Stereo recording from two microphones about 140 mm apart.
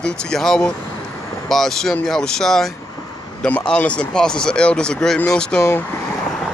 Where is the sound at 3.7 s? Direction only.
5° left (ahead or behind).